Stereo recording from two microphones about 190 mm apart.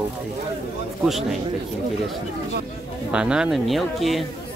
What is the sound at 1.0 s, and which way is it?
Speech, centre (ahead or behind).